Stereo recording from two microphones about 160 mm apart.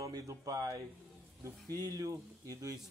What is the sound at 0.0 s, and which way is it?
Speech, 20° right (ahead or behind).